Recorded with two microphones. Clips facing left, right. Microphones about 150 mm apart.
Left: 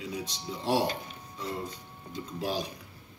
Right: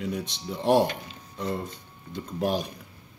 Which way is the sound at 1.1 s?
60° right (ahead or behind).